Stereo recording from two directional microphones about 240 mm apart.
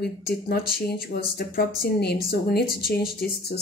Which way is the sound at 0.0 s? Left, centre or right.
Left.